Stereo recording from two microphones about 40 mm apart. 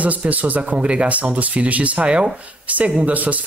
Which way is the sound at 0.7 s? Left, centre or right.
Right.